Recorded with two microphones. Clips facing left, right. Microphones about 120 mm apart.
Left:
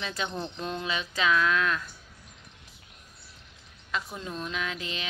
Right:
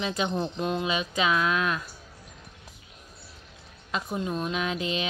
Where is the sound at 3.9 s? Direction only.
20° right (ahead or behind).